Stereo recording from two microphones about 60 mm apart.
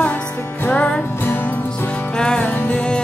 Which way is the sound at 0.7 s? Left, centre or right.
Left.